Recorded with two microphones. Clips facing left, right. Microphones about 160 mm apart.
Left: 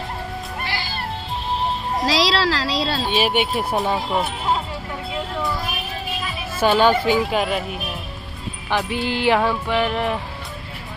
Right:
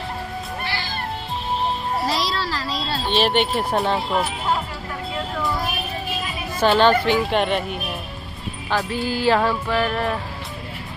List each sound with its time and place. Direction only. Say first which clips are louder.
2.0 s speech: left 9 dB; 90° left
3.1 s speech: right 3 dB; 5° left (ahead or behind)
6.6 s speech: even; 10° left (ahead or behind)
8.6 s music: left 1 dB; 20° left (ahead or behind)
9.7 s speech: left 1 dB; 15° left (ahead or behind)